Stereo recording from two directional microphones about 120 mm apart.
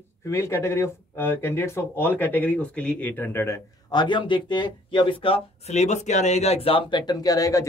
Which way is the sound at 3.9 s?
40° left (ahead or behind).